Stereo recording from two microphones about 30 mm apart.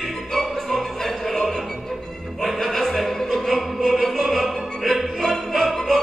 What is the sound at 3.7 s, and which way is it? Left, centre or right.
Music, centre.